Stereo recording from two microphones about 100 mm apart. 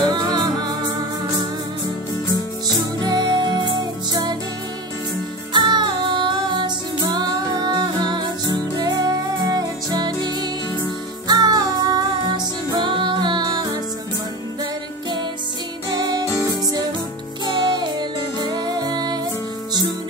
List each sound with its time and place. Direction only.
0.0 s music: 45° right (ahead or behind)
2.7 s music: 40° right (ahead or behind)
5.5 s music: 50° right (ahead or behind)
16.3 s music: 35° left (ahead or behind)
17.7 s music: 45° right (ahead or behind)